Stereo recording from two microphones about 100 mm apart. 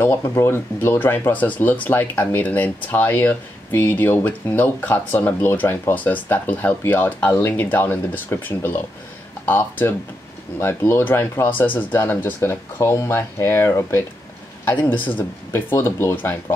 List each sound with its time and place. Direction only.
0.0 s speech: 25° left (ahead or behind)